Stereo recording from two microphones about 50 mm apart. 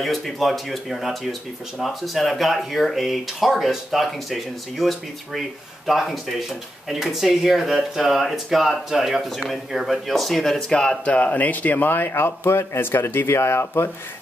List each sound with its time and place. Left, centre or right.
0.0 s speech: centre
10.7 s speech: centre; by 12.1 s left
12.1 s speech: left